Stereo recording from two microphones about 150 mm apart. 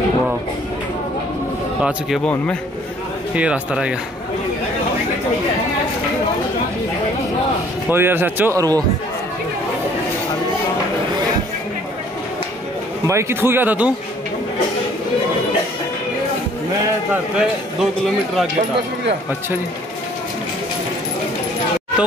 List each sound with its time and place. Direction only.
1.8 s speech: 5° right (ahead or behind)
3.3 s a man's voice: 10° right (ahead or behind)
7.9 s a man's voice: 15° right (ahead or behind)
13.0 s a man's voice: 20° right (ahead or behind)
17.1 s speech: 5° right (ahead or behind)